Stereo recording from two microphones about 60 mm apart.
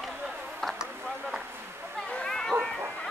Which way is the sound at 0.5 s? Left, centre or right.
Centre.